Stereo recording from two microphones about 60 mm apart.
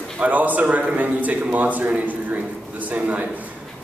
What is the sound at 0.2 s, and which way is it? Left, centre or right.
A man's voice, right.